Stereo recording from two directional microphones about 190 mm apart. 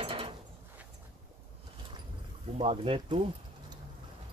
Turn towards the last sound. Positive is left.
turn(degrees=-30)  # may be behind; listen again after turning